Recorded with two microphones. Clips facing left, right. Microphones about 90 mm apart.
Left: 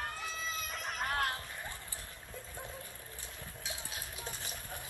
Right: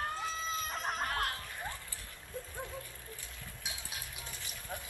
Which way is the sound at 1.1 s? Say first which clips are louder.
Left 1 dB; 25° left (ahead or behind).